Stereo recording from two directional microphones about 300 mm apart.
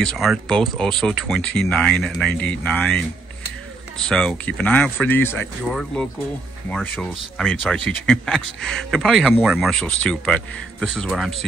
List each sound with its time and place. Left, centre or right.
0.0 s speech: centre
4.0 s speech: centre